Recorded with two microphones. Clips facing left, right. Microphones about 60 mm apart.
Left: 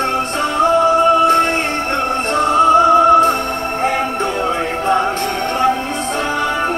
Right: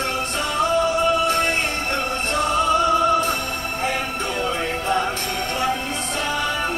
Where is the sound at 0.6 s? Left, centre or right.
Left.